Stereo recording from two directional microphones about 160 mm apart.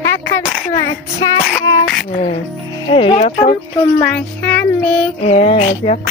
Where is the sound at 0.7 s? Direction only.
25° left (ahead or behind).